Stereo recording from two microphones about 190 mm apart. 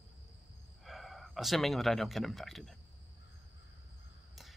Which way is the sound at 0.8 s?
Centre (ahead or behind).